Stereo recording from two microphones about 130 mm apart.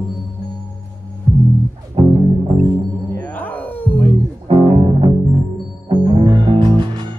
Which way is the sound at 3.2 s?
15° left (ahead or behind).